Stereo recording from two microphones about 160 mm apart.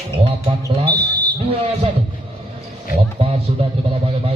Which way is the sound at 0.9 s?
10° left (ahead or behind).